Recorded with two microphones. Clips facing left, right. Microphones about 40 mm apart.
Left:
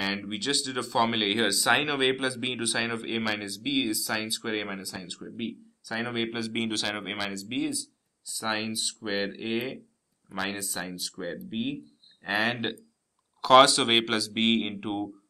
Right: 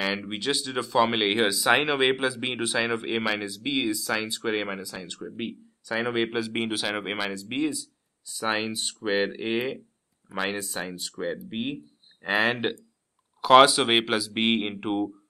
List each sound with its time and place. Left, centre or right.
0.0 s speech: centre